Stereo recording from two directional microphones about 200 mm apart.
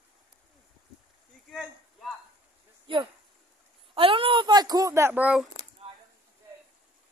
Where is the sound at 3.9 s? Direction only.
25° right (ahead or behind); by 5.5 s 5° right (ahead or behind).